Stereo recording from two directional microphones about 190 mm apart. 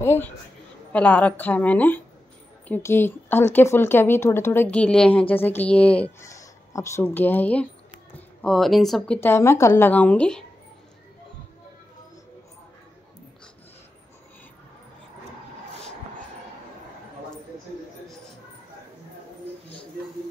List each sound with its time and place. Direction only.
0.0 s a man's voice: 10° left (ahead or behind)